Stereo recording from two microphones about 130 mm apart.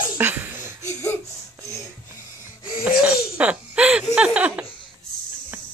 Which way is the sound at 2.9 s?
10° right (ahead or behind).